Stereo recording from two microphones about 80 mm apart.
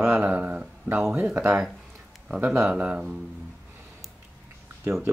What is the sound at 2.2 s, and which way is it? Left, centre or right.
Speech, centre.